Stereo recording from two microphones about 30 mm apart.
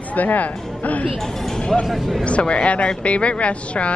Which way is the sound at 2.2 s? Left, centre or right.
Left.